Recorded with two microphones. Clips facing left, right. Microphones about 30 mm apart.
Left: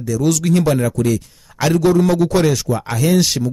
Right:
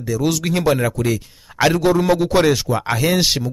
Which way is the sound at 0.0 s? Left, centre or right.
Right.